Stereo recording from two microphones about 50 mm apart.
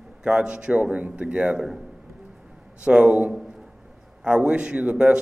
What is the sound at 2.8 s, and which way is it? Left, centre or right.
A man's voice, right.